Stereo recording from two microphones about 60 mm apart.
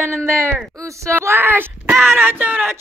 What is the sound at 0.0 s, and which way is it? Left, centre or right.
Speech, right.